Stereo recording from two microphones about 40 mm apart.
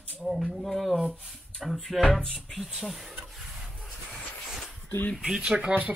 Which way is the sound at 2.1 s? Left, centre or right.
Centre.